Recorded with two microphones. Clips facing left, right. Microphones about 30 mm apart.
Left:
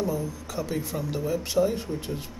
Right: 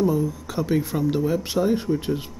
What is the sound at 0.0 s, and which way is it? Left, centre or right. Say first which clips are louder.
Speech: right 7 dB; right.